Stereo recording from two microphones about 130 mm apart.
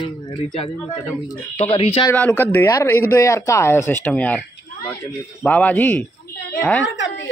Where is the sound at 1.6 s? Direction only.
50° left (ahead or behind).